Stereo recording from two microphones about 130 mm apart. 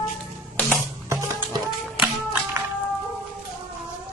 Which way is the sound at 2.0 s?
15° right (ahead or behind).